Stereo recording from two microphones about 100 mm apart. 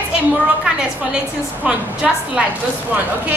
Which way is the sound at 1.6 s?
10° right (ahead or behind).